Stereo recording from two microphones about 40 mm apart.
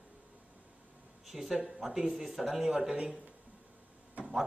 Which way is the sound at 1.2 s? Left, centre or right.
Centre.